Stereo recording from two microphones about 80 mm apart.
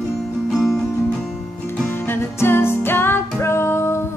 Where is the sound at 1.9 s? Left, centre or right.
Left.